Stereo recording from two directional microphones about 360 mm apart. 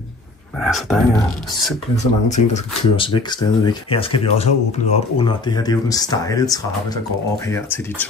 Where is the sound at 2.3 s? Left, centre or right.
Centre.